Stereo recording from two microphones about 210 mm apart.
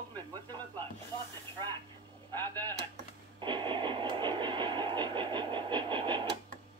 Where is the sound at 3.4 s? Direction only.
20° right (ahead or behind).